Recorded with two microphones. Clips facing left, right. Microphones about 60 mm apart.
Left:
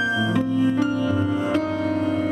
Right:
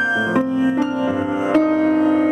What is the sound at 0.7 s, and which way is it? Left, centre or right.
Music, right.